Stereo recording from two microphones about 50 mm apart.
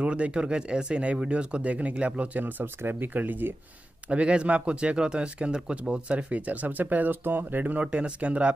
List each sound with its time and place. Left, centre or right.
0.0 s speech: right
2.4 s speech: right
4.1 s speech: right
7.8 s speech: right